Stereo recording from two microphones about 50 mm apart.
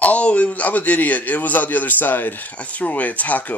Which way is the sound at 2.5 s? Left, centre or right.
Left.